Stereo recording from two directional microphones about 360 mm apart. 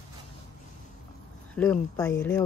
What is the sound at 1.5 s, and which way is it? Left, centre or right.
Speech, centre.